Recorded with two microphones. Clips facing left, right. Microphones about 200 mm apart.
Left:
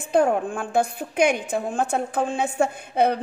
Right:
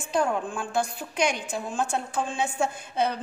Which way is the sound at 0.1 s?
55° left (ahead or behind).